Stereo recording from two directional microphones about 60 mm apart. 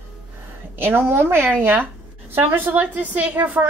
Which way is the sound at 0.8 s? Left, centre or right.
Right.